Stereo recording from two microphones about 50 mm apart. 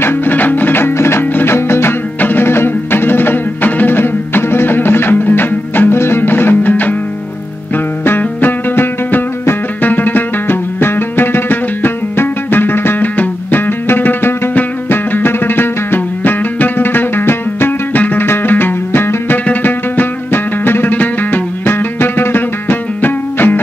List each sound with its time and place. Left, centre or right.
0.0 s music: left
2.1 s music: left
8.2 s music: left
17.9 s music: left
18.2 s music: left